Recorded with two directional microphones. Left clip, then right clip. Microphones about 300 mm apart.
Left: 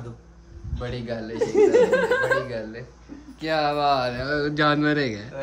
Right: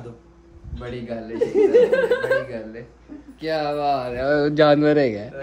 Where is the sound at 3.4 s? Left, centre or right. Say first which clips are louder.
Left 1 dB; centre.